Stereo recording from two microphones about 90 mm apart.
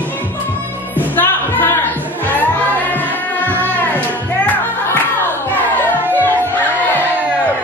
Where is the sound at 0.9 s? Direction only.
20° left (ahead or behind).